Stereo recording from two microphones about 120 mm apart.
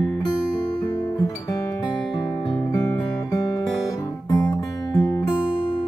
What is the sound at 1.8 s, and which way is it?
Music, 35° left (ahead or behind).